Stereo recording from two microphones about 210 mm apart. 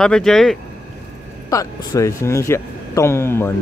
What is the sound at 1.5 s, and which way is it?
Speech, 15° left (ahead or behind).